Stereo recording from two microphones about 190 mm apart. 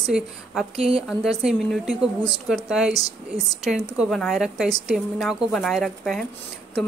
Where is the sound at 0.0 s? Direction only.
Centre (ahead or behind).